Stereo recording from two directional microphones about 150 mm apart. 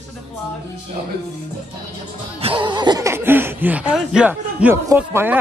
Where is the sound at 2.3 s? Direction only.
35° right (ahead or behind).